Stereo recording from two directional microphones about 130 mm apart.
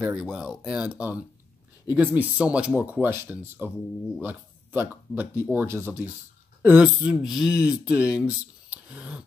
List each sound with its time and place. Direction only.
0.0 s speech: 5° right (ahead or behind)